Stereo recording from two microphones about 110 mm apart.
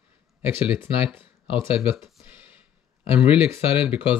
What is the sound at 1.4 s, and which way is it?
Speech, 50° left (ahead or behind).